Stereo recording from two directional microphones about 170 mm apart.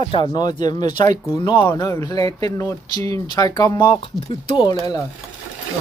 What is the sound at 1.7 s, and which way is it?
Speech, 15° left (ahead or behind).